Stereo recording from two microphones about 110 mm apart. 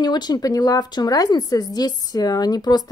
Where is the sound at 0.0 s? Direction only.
40° left (ahead or behind).